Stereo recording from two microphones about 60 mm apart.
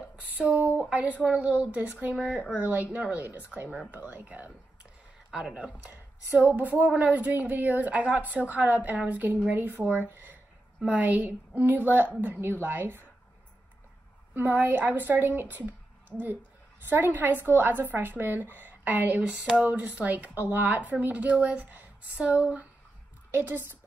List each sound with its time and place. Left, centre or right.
0.4 s a sound: right
0.8 s speech: right
10.1 s a sound: right
10.9 s a woman's voice: right
14.3 s a woman's voice: right
23.3 s a woman's voice: right